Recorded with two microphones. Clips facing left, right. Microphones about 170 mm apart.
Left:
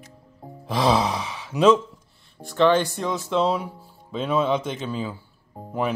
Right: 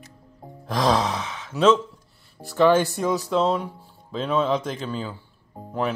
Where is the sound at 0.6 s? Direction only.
5° left (ahead or behind).